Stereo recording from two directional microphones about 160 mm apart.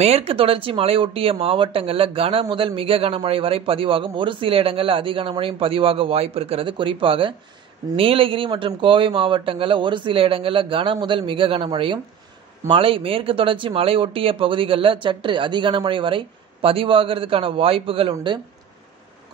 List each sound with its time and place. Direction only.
0.0 s speech: 40° right (ahead or behind)